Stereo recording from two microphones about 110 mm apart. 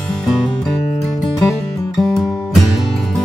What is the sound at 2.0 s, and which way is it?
Music, centre (ahead or behind).